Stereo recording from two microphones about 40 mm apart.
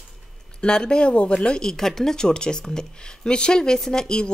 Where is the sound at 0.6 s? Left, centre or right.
Centre.